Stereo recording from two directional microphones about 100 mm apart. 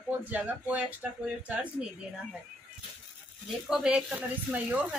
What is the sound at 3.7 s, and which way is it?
Speech, 5° right (ahead or behind).